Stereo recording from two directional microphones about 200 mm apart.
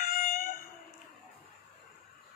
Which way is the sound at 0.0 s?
45° left (ahead or behind).